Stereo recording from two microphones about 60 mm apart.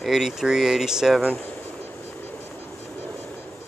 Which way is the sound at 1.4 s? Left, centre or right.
Left.